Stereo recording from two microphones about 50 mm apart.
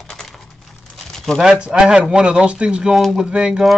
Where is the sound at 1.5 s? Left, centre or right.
Centre.